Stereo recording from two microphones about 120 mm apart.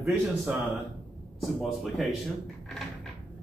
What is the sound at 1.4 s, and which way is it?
Speech, centre (ahead or behind).